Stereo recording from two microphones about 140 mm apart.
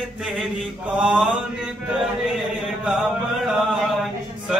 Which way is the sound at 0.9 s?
5° right (ahead or behind).